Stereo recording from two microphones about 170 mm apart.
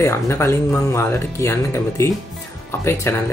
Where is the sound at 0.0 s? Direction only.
15° left (ahead or behind).